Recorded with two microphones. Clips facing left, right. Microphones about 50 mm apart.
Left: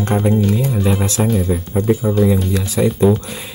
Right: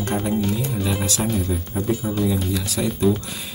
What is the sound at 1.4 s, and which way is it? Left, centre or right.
Speech, left.